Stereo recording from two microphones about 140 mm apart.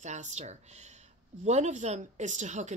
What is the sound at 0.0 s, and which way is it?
Speech, 55° right (ahead or behind).